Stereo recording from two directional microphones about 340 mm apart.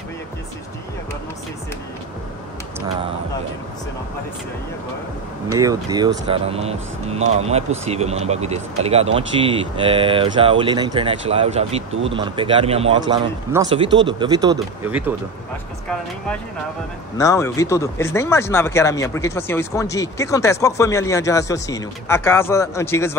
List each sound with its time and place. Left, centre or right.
5.5 s speech: centre
17.2 s speech: centre